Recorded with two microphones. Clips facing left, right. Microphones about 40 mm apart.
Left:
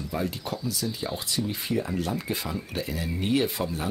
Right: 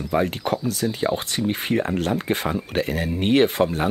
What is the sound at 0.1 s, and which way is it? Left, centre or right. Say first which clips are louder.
Speech: right 10 dB; right.